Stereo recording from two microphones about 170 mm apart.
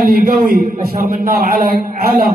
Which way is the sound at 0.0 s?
60° right (ahead or behind).